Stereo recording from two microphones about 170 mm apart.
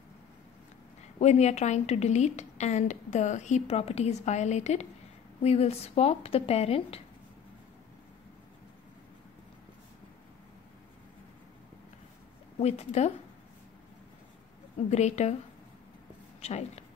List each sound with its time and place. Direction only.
1.2 s a woman's voice: 40° left (ahead or behind)
12.5 s speech: 40° left (ahead or behind)
14.9 s a woman's voice: 40° left (ahead or behind)
16.3 s speech: 40° left (ahead or behind)